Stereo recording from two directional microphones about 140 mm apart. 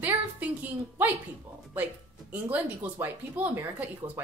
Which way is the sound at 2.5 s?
10° right (ahead or behind).